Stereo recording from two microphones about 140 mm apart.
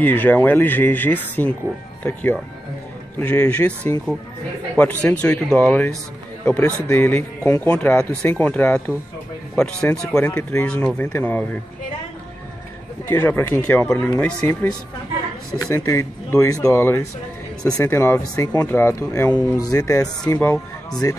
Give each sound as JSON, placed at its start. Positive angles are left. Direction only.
{"t": 0.0, "sound": "speech", "side_deg": 10}
{"t": 3.2, "sound": "speech", "side_deg": 10}
{"t": 13.1, "sound": "speech", "side_deg": 15}
{"t": 20.3, "sound": "speech", "side_deg": 10}
{"t": 20.9, "sound": "speech", "side_deg": 25}